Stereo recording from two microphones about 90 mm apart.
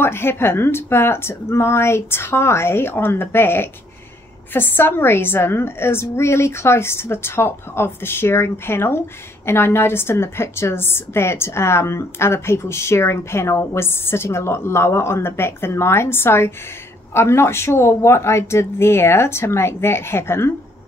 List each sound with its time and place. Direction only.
0.0 s a woman's voice: 25° left (ahead or behind)